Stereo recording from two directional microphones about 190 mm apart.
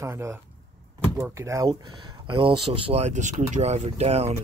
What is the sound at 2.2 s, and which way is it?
Speech, 30° right (ahead or behind).